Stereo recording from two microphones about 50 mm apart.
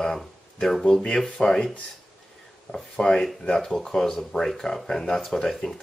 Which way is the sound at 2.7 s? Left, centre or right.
Centre.